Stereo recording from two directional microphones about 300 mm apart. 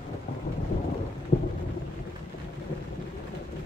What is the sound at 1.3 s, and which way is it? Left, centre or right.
Thunder, left.